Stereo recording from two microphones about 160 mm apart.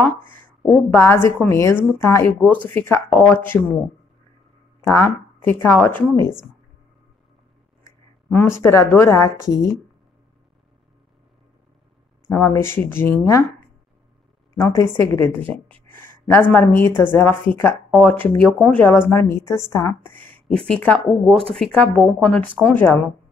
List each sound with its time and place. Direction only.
0.3 s a woman's voice: 10° left (ahead or behind)
4.8 s a woman's voice: 15° left (ahead or behind)
8.3 s a woman's voice: 15° left (ahead or behind)
12.4 s a woman's voice: 15° left (ahead or behind)
14.5 s a woman's voice: 20° left (ahead or behind)